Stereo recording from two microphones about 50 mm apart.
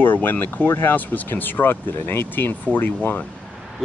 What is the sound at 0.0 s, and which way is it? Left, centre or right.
Speech, left.